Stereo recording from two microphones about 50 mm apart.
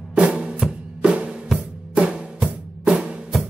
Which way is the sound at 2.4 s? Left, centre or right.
Centre.